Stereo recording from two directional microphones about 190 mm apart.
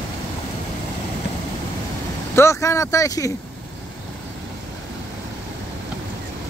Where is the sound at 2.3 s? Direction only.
15° left (ahead or behind).